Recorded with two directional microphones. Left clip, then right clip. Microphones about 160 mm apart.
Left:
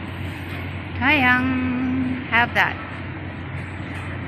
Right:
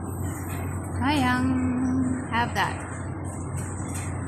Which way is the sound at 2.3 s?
Centre (ahead or behind).